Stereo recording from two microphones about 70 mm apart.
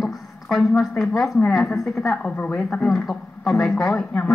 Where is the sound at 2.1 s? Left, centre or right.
Left.